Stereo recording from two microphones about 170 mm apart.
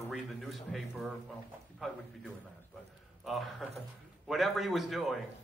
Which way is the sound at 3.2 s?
Centre (ahead or behind).